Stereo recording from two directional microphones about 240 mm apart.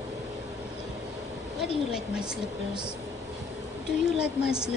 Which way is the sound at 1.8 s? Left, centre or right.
Centre.